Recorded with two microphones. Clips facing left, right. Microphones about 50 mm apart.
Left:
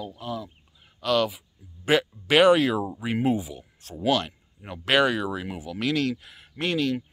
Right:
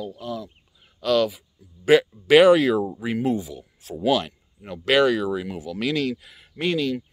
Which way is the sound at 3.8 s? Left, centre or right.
Centre.